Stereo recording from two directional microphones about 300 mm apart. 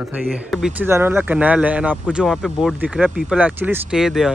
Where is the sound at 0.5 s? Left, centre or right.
Centre.